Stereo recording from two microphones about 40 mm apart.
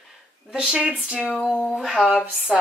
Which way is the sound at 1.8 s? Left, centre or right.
Centre.